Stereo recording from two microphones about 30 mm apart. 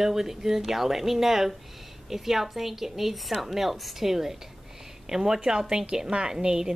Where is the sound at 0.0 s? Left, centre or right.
Centre.